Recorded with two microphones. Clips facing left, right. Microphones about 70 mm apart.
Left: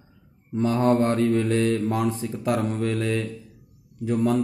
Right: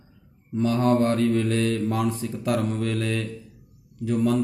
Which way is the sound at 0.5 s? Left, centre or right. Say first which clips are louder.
Left 1 dB; left.